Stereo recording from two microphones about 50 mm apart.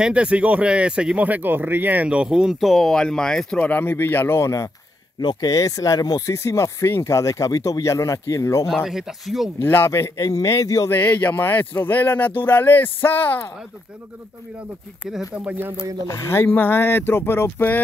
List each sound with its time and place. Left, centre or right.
0.0 s speech: right
1.2 s speech: right
2.0 s speech: centre
2.6 s speech: centre
3.7 s speech: left
4.4 s a man's voice: left
6.2 s speech: left
8.6 s speech: centre
9.6 s speech: left
9.8 s a man's voice: left
10.9 s speech: left
15.3 s speech: right
16.1 s a man's voice: left
16.3 s speech: left